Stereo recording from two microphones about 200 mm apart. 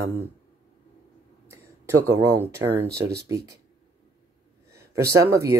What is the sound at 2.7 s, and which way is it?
Speech, 55° right (ahead or behind).